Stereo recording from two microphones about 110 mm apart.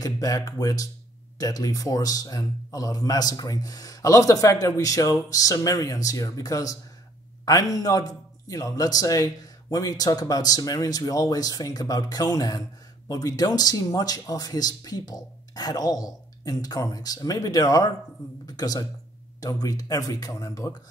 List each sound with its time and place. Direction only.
0.0 s a man's voice: 30° left (ahead or behind)